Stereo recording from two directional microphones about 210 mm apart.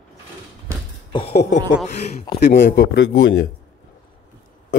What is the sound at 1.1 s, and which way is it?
A woman's voice, 30° left (ahead or behind).